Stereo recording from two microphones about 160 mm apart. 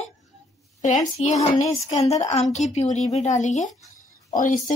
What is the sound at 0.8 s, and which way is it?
A woman's voice, 45° left (ahead or behind).